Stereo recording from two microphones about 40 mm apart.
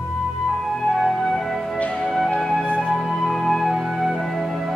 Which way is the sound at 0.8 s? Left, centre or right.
Centre.